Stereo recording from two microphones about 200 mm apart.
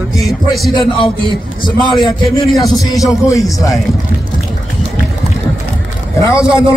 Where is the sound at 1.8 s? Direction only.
20° left (ahead or behind).